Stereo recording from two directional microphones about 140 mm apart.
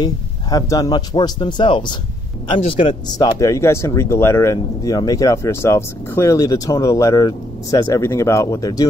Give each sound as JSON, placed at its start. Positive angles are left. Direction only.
{"t": 0.0, "sound": "speech", "side_deg": 25}
{"t": 3.3, "sound": "speech", "side_deg": 20}